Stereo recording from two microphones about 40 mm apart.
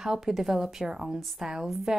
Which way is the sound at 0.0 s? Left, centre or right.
Centre.